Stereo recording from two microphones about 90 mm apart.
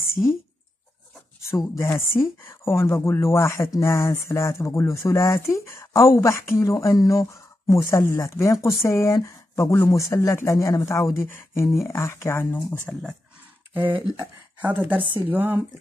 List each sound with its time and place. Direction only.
0.0 s a sound: 30° left (ahead or behind)
1.8 s speech: 30° left (ahead or behind)
12.9 s speech: 5° left (ahead or behind)
14.1 s speech: 20° right (ahead or behind)